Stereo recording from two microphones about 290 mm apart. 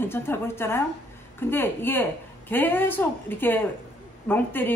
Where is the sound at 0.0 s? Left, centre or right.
Centre.